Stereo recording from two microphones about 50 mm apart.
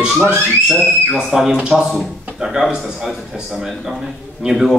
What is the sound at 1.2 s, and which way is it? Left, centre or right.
Speech, centre.